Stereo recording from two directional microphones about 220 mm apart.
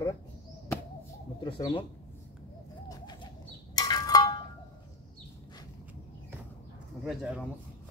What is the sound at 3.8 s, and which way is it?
Wind chime, 15° left (ahead or behind).